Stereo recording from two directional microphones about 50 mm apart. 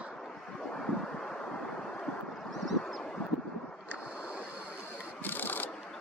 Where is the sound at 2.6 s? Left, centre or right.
Centre.